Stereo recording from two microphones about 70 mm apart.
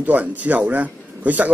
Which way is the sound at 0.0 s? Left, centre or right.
Right.